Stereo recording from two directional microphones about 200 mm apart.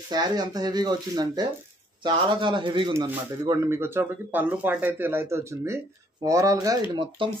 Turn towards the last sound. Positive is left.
turn(degrees=-25)  # may be behind; listen again after turning